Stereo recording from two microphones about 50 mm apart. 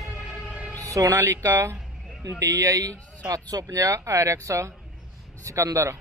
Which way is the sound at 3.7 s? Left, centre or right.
Right.